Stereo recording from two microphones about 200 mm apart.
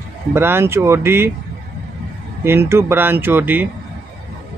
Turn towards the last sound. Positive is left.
turn(degrees=-10)  # may be behind; listen again after turning